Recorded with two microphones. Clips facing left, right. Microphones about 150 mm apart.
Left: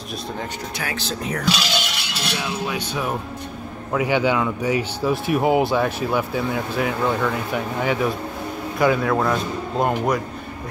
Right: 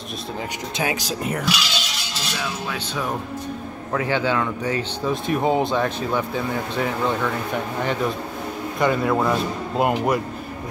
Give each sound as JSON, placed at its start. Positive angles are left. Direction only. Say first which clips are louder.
{"t": 0.7, "sound": "speech", "louder": "right 5 dB", "side_deg": -15}
{"t": 1.8, "sound": "music", "louder": "left 3 dB", "side_deg": 65}
{"t": 3.9, "sound": "speech", "louder": "left 2 dB", "side_deg": 15}